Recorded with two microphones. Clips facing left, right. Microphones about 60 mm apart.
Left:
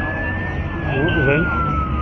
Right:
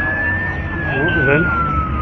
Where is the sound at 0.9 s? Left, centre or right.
Right.